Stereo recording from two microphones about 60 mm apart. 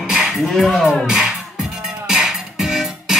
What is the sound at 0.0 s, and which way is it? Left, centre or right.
Music, centre.